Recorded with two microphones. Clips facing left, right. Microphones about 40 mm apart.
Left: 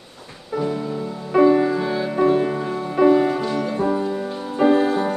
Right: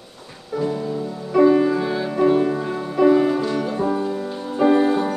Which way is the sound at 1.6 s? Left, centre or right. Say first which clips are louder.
Even; centre.